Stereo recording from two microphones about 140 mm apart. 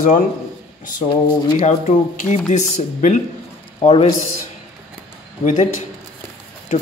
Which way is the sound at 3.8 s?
40° left (ahead or behind).